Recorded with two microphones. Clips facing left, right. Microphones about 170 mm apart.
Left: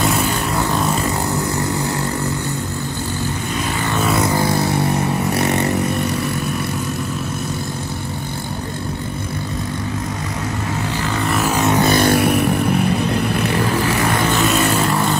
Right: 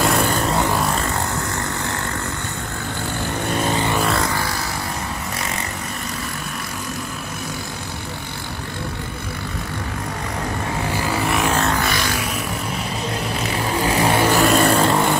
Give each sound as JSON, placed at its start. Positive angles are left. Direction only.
{"t": 3.5, "sound": "vehicle", "side_deg": -35}
{"t": 4.2, "sound": "vehicle", "side_deg": 20}
{"t": 5.4, "sound": "vehicle", "side_deg": 65}
{"t": 11.1, "sound": "vehicle", "side_deg": 0}
{"t": 11.5, "sound": "vehicle", "side_deg": 20}
{"t": 12.0, "sound": "vehicle", "side_deg": 60}
{"t": 14.3, "sound": "vehicle", "side_deg": 0}
{"t": 14.6, "sound": "vehicle", "side_deg": -30}